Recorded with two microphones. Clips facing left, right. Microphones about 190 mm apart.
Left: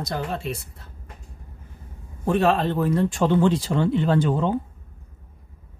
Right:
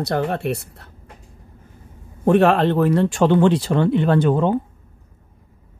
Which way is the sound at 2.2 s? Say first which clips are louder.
Right 6 dB; 65° right (ahead or behind).